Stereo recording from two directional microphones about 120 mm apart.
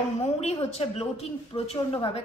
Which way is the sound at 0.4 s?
60° left (ahead or behind).